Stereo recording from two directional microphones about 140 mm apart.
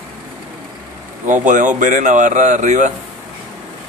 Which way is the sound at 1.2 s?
65° right (ahead or behind).